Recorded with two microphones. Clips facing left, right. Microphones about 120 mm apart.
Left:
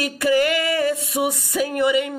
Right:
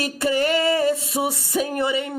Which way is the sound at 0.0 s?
25° right (ahead or behind).